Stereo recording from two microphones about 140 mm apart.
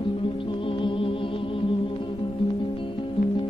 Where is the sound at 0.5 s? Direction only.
35° left (ahead or behind).